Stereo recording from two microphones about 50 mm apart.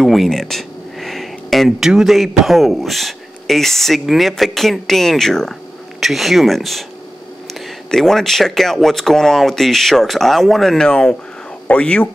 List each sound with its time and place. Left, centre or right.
0.0 s a sound: centre
1.8 s a man's voice: centre
5.9 s a man's voice: centre
7.9 s a man's voice: centre
10.8 s speech: centre